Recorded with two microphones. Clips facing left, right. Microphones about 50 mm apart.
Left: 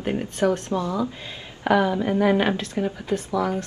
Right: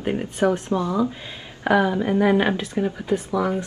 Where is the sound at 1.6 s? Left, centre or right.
Centre.